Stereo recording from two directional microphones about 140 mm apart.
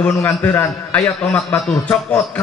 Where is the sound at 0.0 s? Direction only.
10° left (ahead or behind).